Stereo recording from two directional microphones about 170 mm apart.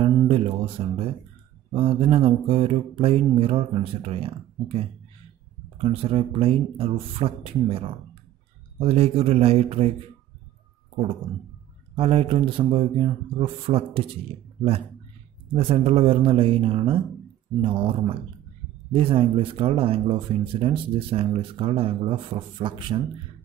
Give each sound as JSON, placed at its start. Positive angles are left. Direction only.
{"t": 0.0, "sound": "speech", "side_deg": -35}
{"t": 11.9, "sound": "speech", "side_deg": -35}
{"t": 15.5, "sound": "speech", "side_deg": -35}